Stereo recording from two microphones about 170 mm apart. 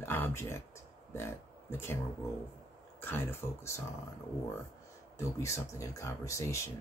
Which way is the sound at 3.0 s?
15° left (ahead or behind).